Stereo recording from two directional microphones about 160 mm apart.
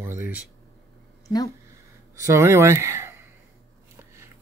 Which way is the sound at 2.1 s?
20° right (ahead or behind).